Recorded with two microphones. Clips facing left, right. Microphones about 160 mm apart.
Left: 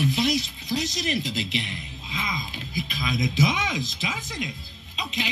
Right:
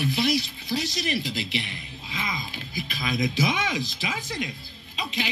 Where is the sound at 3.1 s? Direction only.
60° right (ahead or behind).